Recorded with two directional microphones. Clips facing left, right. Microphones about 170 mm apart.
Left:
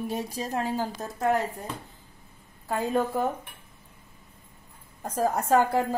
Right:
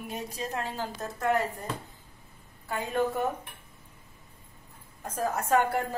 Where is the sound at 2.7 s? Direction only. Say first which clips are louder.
Left 3 dB; 35° left (ahead or behind).